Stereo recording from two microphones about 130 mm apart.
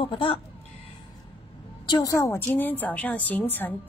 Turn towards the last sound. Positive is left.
turn(degrees=15)  # may be behind; listen again after turning